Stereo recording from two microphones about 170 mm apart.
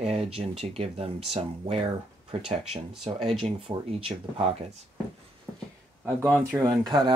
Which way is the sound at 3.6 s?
35° right (ahead or behind).